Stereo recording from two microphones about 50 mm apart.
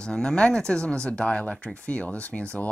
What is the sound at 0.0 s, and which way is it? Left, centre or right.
Speech, centre.